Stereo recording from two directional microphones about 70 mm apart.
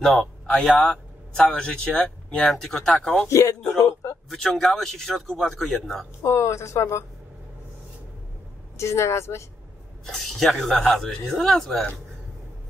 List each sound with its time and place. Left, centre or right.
0.0 s a man's voice: centre
3.3 s speech: left
4.3 s speech: centre
6.2 s speech: left
8.7 s a woman's voice: left
10.0 s speech: centre